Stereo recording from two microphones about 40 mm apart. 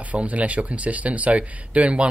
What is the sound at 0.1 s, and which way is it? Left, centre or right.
Speech, right.